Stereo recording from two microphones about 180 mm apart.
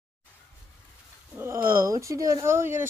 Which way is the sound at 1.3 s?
15° right (ahead or behind).